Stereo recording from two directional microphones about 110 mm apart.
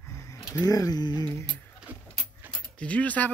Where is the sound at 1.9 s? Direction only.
15° right (ahead or behind).